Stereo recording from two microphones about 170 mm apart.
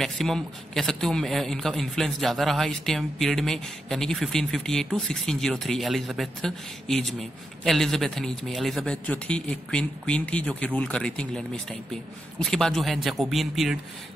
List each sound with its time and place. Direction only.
0.0 s a man's voice: centre (ahead or behind)